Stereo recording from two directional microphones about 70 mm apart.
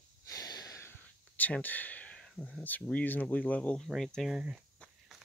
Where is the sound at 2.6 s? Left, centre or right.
Left.